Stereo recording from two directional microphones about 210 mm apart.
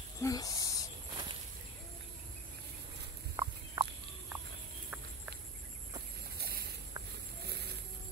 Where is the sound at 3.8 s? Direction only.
15° right (ahead or behind).